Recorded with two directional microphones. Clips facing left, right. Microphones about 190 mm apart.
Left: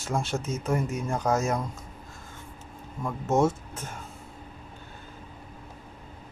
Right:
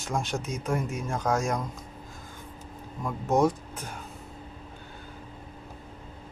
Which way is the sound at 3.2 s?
15° right (ahead or behind).